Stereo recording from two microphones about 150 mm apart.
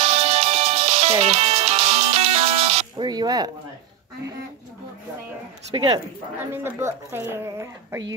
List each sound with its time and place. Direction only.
0.0 s music: 45° right (ahead or behind)
3.0 s a sound: 25° right (ahead or behind)
5.7 s speech: 35° right (ahead or behind)
6.5 s speech: 15° right (ahead or behind)